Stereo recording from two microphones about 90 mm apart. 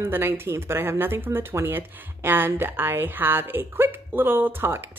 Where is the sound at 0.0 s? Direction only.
30° right (ahead or behind).